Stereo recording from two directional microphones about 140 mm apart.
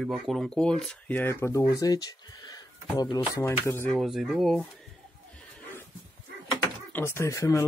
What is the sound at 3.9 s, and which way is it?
Speech, centre (ahead or behind).